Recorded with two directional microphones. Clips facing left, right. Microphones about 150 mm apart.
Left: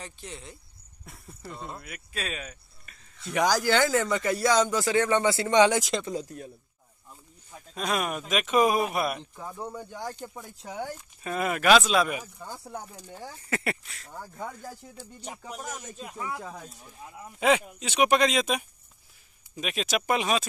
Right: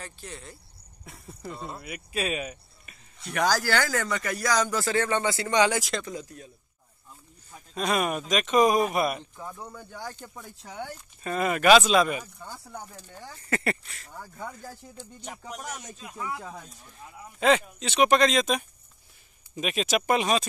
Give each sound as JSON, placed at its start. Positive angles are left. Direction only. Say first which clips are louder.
{"t": 0.0, "sound": "speech", "louder": "even", "side_deg": 15}
{"t": 1.0, "sound": "speech", "louder": "right 3 dB", "side_deg": 0}
{"t": 3.3, "sound": "speech", "louder": "left 1 dB", "side_deg": 15}
{"t": 6.1, "sound": "speech", "louder": "left 4 dB", "side_deg": 45}
{"t": 7.7, "sound": "speech", "louder": "right 3 dB", "side_deg": 0}
{"t": 9.4, "sound": "speech", "louder": "left 3 dB", "side_deg": 15}
{"t": 11.0, "sound": "speech", "louder": "right 6 dB", "side_deg": 5}